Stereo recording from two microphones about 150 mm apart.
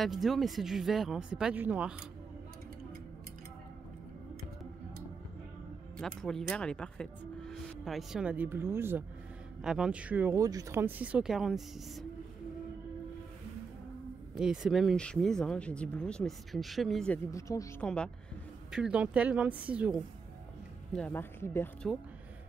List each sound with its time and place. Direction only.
0.0 s speech: centre (ahead or behind)
5.9 s speech: 5° left (ahead or behind); by 9.0 s 15° right (ahead or behind)
9.6 s speech: 5° right (ahead or behind)
10.4 s speech: 25° right (ahead or behind); by 12.1 s centre (ahead or behind)
14.3 s speech: 5° right (ahead or behind)
17.3 s speech: 20° left (ahead or behind)
17.8 s speech: 5° left (ahead or behind)
18.7 s speech: 5° right (ahead or behind)
20.9 s speech: 10° left (ahead or behind)